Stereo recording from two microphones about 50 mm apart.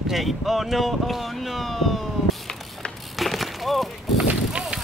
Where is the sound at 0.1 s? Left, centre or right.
Centre.